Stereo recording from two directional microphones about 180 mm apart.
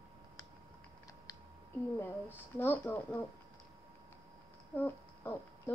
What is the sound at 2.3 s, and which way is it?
Speech, 10° left (ahead or behind).